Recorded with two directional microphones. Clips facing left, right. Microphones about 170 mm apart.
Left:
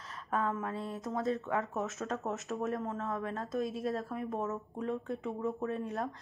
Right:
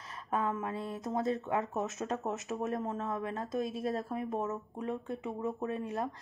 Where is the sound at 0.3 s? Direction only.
15° right (ahead or behind).